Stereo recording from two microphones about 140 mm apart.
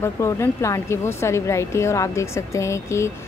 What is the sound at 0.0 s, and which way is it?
Speech, 20° left (ahead or behind).